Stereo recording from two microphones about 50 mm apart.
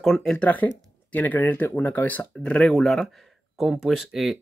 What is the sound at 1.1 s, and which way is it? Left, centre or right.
Speech, left.